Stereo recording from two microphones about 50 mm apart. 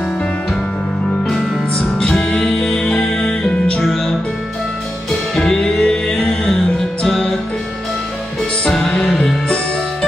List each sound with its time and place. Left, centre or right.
2.0 s music: centre
3.8 s music: centre
5.3 s music: centre
7.1 s music: centre
8.6 s music: centre